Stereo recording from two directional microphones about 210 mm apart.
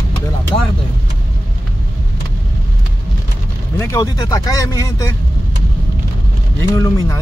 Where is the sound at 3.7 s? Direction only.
15° left (ahead or behind).